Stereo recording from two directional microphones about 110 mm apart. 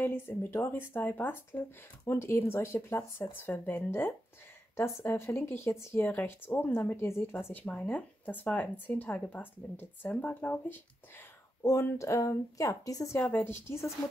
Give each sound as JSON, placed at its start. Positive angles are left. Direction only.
{"t": 0.0, "sound": "a woman's voice", "side_deg": 20}
{"t": 11.6, "sound": "speech", "side_deg": 25}
{"t": 13.2, "sound": "speech", "side_deg": 20}